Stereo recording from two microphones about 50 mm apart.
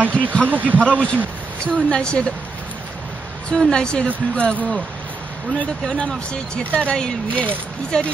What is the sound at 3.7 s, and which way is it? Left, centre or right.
Speech, centre.